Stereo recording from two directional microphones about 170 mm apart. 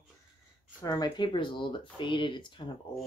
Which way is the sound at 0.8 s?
25° left (ahead or behind).